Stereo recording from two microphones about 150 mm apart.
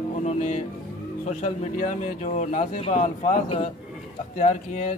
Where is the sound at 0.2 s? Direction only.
50° left (ahead or behind).